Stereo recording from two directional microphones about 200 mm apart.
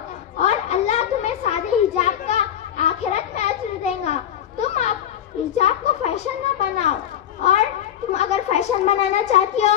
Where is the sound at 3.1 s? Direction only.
35° left (ahead or behind).